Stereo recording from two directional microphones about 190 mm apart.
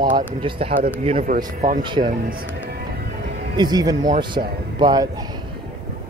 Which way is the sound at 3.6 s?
20° right (ahead or behind).